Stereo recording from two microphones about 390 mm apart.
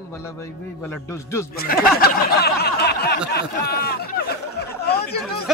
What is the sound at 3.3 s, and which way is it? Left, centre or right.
Speech, left.